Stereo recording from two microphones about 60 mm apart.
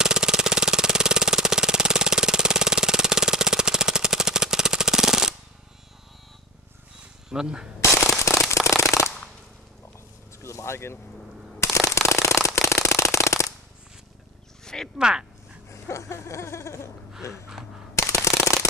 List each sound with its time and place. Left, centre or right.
0.0 s engine: centre
7.0 s wild animals: centre
7.9 s firecracker: left
10.4 s a sound: left
14.6 s a sound: centre
15.0 s speech: centre
15.7 s speech: left
17.3 s a sound: centre
17.9 s machine gun: left